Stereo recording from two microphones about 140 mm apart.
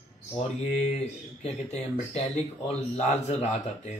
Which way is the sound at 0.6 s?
55° left (ahead or behind).